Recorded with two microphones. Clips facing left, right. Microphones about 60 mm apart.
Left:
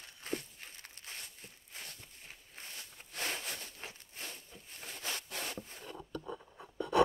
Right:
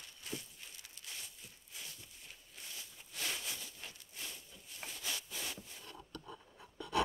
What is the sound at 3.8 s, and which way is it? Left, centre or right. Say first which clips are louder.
Wood: left 3 dB; left.